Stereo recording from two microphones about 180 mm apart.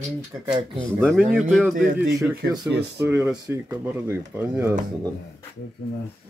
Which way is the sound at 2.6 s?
70° right (ahead or behind).